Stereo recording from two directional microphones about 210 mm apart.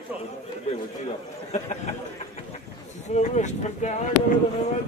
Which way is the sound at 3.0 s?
35° left (ahead or behind).